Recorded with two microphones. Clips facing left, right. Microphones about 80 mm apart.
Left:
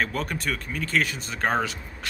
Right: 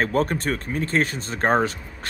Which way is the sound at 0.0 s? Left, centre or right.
Right.